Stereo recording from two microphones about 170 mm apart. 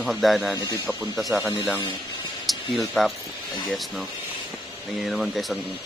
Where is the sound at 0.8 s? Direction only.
Centre (ahead or behind).